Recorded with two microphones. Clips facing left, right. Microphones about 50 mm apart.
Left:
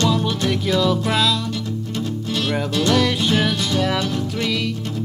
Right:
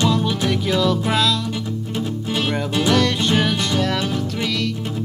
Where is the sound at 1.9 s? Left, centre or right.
Centre.